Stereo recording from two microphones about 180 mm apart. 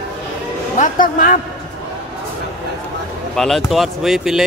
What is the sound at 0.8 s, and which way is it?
Speech, 50° left (ahead or behind).